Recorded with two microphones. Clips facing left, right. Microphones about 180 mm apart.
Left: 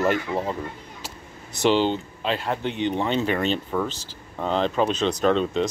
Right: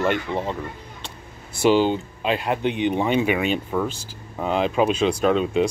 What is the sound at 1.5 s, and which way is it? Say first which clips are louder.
Speech: right 3 dB; 10° right (ahead or behind).